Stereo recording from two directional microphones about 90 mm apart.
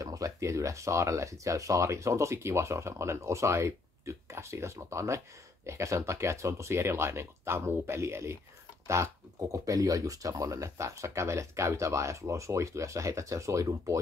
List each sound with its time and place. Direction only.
0.0 s speech: 40° right (ahead or behind)